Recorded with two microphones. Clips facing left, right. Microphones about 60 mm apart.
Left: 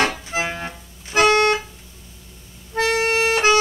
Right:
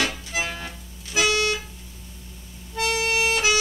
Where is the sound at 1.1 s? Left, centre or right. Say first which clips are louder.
Left 7 dB; left.